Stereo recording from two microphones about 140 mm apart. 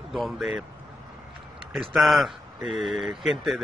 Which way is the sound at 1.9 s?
Centre (ahead or behind).